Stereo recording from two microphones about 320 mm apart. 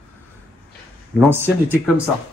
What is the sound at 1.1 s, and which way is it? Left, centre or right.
Speech, centre.